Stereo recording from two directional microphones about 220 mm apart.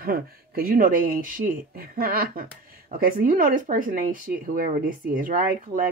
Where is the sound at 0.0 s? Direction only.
40° right (ahead or behind).